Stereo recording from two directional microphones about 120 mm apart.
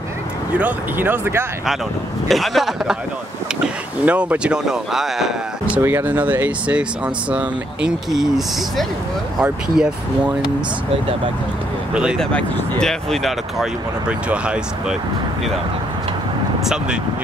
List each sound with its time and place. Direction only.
0.5 s speech: 15° right (ahead or behind)
2.2 s speech: centre (ahead or behind)
5.8 s speech: 20° right (ahead or behind)
11.9 s speech: 10° right (ahead or behind)
12.2 s speech: 10° left (ahead or behind); by 15.0 s 10° right (ahead or behind)
16.6 s speech: 5° right (ahead or behind)